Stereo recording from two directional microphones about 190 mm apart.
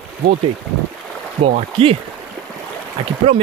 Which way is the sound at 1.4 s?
30° right (ahead or behind).